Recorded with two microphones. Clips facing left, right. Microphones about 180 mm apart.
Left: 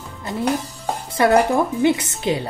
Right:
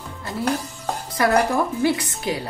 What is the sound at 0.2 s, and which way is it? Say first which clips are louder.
Music: left 3 dB; 20° left (ahead or behind).